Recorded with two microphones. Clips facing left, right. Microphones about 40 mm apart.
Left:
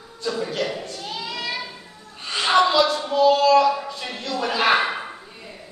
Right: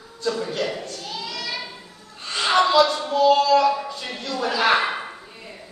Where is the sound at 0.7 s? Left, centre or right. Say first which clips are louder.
Left 1 dB; left.